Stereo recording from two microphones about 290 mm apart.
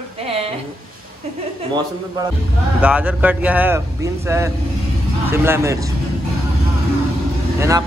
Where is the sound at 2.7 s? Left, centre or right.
Centre.